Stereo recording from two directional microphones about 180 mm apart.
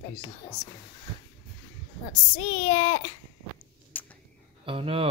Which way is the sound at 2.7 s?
30° left (ahead or behind).